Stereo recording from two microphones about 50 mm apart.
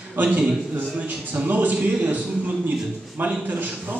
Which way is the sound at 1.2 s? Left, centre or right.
Right.